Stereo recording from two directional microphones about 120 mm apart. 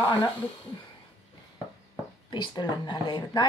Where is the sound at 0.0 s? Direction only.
20° left (ahead or behind).